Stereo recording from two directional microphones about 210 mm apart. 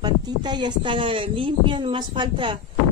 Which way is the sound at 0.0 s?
20° right (ahead or behind).